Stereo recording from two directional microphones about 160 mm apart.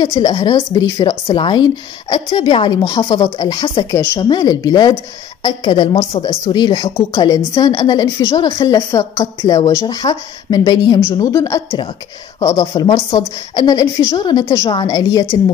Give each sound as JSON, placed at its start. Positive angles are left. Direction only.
{"t": 0.1, "sound": "speech", "side_deg": 25}
{"t": 3.9, "sound": "a woman's voice", "side_deg": 15}